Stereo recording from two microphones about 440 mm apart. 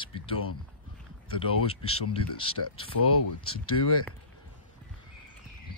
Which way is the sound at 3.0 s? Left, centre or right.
Left.